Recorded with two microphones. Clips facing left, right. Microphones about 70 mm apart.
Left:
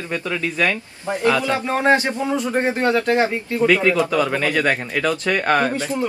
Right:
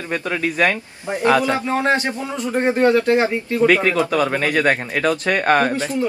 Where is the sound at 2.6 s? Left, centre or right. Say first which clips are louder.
Right 6 dB; centre.